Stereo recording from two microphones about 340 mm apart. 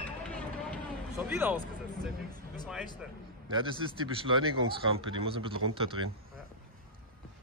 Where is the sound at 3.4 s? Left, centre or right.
Centre.